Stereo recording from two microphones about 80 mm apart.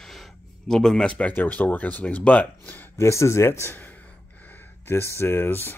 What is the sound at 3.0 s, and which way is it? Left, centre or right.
Speech, left.